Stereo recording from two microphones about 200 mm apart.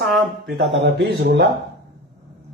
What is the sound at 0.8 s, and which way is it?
Speech, 55° right (ahead or behind).